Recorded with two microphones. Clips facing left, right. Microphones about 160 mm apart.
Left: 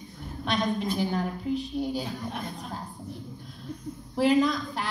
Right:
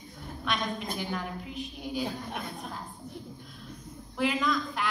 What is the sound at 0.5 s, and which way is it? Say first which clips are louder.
A man's voice: left 5 dB; 35° left (ahead or behind).